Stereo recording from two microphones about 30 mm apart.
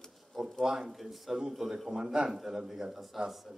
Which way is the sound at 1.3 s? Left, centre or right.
Centre.